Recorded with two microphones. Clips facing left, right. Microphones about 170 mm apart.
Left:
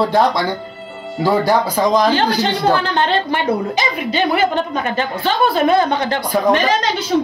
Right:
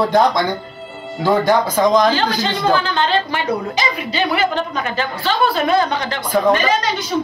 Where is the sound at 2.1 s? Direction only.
70° left (ahead or behind); by 4.4 s 50° left (ahead or behind).